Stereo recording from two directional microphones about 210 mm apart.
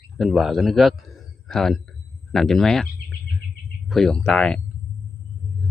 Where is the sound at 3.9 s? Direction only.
5° left (ahead or behind).